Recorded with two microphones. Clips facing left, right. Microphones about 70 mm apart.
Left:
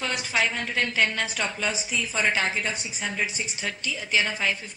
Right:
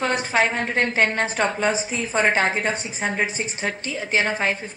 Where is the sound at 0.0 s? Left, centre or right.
Right.